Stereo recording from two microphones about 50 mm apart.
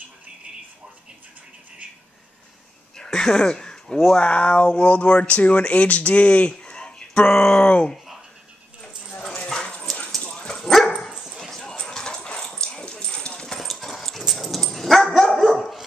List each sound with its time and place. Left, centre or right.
3.0 s speech: centre; by 6.5 s left
6.5 s a sound: centre
7.6 s speech: left
9.2 s a sound: centre
10.3 s dog: centre
13.6 s dog: centre